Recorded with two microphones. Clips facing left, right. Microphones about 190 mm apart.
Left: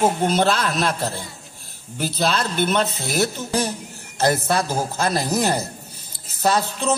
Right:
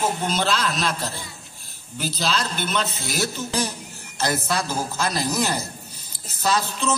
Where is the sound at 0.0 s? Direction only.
55° left (ahead or behind).